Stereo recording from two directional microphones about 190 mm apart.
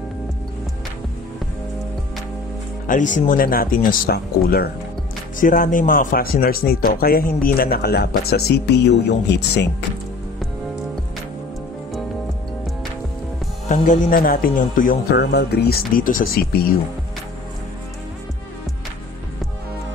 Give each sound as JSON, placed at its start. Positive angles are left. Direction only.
{"t": 2.9, "sound": "speech", "side_deg": 40}
{"t": 13.7, "sound": "speech", "side_deg": 45}